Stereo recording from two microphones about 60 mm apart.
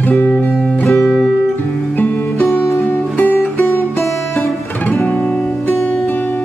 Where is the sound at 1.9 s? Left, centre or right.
Left.